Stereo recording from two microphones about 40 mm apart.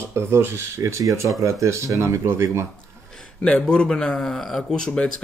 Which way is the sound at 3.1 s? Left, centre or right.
Left.